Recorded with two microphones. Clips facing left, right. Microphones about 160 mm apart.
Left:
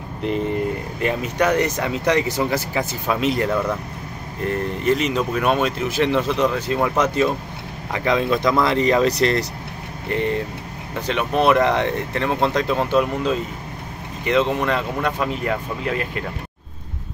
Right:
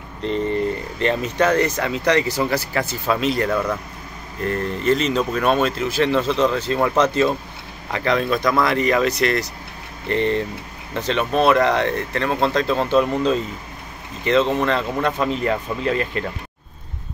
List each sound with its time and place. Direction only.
0.2 s speech: 10° left (ahead or behind); by 9.5 s 30° left (ahead or behind)
10.0 s speech: 10° left (ahead or behind)